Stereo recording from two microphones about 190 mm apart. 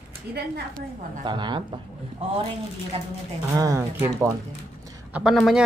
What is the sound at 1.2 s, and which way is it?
Speech, 25° right (ahead or behind).